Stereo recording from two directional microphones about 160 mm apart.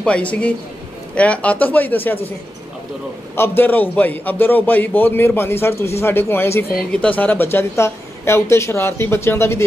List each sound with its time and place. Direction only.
0.0 s a man's voice: 10° left (ahead or behind)
3.3 s a man's voice: 15° left (ahead or behind)